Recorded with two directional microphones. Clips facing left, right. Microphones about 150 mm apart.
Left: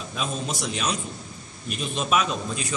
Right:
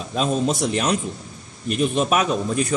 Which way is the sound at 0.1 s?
55° right (ahead or behind).